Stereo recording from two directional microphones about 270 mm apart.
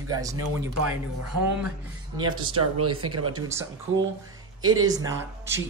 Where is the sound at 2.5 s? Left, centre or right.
Right.